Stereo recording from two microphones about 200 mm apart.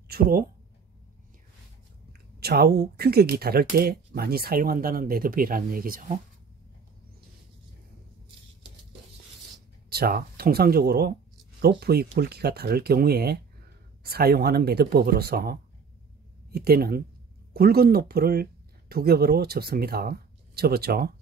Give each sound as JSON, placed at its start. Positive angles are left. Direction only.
{"t": 0.1, "sound": "speech", "side_deg": -45}
{"t": 2.4, "sound": "speech", "side_deg": -55}
{"t": 9.8, "sound": "speech", "side_deg": -50}